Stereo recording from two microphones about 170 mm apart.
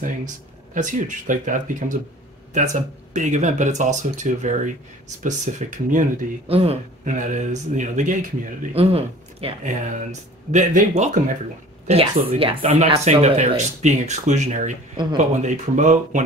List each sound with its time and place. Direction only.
0.7 s speech: 50° right (ahead or behind)
6.4 s speech: 35° right (ahead or behind)
8.7 s speech: 35° right (ahead or behind)
11.9 s speech: 35° right (ahead or behind)